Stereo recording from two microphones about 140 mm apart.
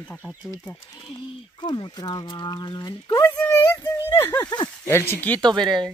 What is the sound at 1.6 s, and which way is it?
Speech, 35° left (ahead or behind).